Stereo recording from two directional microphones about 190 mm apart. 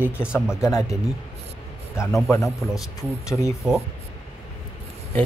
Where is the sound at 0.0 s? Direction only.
5° right (ahead or behind).